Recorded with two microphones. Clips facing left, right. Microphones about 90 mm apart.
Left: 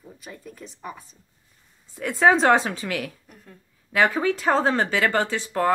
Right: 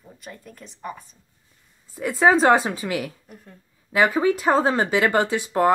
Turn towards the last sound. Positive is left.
turn(degrees=-15)  # may be behind; listen again after turning